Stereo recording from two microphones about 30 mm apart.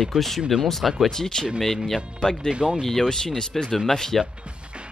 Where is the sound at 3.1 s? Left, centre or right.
Left.